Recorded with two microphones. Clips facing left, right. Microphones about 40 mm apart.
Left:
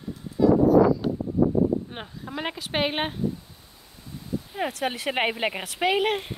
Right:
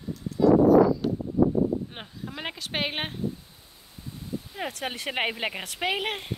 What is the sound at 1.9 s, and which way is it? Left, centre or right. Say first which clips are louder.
Speech: left 4 dB; centre.